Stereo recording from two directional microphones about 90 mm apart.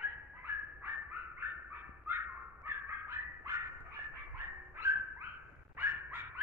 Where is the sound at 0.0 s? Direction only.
20° right (ahead or behind).